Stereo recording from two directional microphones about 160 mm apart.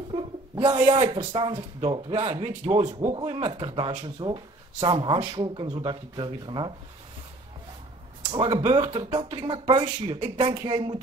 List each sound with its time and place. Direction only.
0.1 s a sound: 30° right (ahead or behind)
0.7 s speech: 45° right (ahead or behind)
1.0 s speech: 30° right (ahead or behind)
8.3 s speech: 30° right (ahead or behind)
9.4 s speech: 30° right (ahead or behind)